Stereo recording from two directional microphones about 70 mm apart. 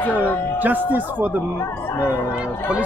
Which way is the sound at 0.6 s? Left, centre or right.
Right.